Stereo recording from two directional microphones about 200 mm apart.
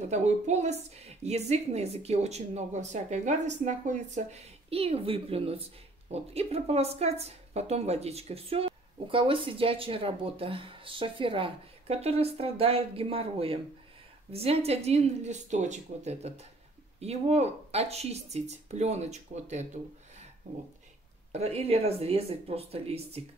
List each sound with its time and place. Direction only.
0.1 s a woman's voice: 35° right (ahead or behind)
21.3 s a woman's voice: 30° right (ahead or behind)